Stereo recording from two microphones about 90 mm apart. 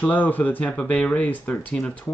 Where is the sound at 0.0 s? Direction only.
20° left (ahead or behind).